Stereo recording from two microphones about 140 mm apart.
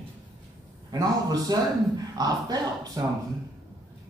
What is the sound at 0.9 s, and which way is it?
A man's voice, 25° right (ahead or behind).